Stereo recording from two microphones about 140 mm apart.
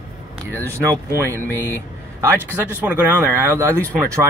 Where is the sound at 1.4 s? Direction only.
15° left (ahead or behind).